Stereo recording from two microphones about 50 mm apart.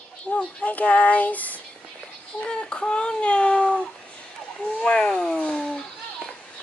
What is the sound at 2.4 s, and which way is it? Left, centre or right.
Speech, centre.